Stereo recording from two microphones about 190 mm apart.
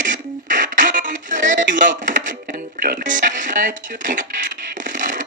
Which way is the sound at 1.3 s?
45° right (ahead or behind).